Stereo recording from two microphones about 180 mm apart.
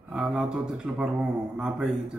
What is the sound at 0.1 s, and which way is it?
Speech, 5° right (ahead or behind).